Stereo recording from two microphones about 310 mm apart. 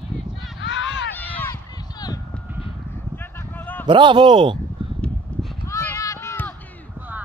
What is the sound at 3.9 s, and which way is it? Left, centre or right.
Speech, centre.